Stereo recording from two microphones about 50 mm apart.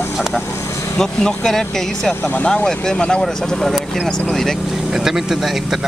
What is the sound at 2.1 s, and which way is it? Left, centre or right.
Speech, left.